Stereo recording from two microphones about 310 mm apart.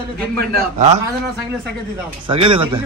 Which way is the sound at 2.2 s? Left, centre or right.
Centre.